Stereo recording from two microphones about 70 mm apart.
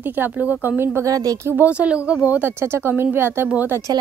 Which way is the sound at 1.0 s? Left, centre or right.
Right.